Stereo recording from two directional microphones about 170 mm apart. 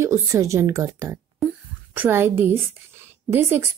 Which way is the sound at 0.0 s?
15° right (ahead or behind).